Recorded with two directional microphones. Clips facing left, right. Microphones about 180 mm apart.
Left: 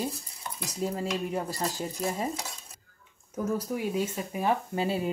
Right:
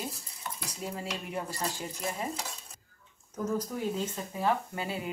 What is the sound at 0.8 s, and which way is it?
Speech, 40° left (ahead or behind).